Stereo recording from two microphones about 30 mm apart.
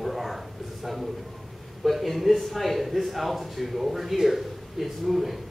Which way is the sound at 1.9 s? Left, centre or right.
Centre.